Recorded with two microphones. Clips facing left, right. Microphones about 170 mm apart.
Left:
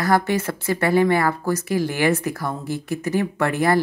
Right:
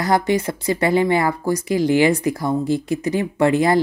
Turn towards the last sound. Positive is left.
turn(degrees=-15)  # may be behind; listen again after turning